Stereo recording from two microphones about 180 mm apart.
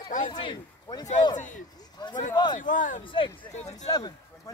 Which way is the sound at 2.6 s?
45° left (ahead or behind).